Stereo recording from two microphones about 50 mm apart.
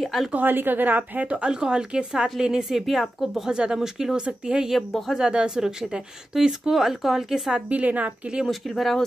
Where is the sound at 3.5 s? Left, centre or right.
Centre.